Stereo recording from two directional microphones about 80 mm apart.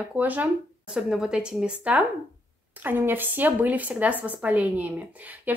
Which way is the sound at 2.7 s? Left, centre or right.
Right.